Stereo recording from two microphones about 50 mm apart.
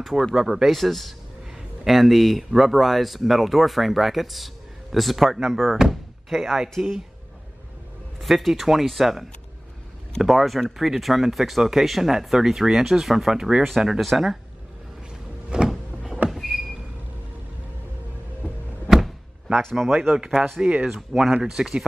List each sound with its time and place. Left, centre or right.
0.0 s speech: centre
8.2 s speech: centre
15.5 s power windows: centre
16.3 s vehicle: centre
19.8 s speech: centre